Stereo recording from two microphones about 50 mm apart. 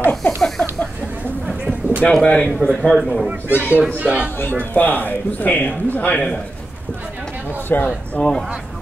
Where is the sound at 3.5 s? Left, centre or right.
Left.